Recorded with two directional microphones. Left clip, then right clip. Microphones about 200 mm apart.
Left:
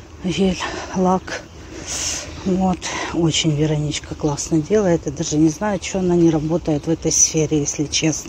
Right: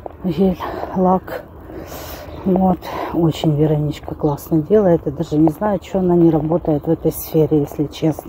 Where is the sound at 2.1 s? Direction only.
5° right (ahead or behind).